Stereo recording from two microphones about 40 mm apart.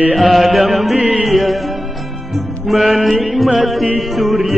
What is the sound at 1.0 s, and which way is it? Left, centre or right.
Music, right.